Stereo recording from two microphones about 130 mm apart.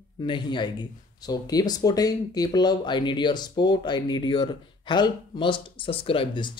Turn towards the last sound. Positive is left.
turn(degrees=40)  # may be behind; listen again after turning